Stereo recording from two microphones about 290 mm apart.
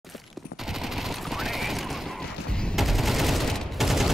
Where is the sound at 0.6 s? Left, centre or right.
Centre.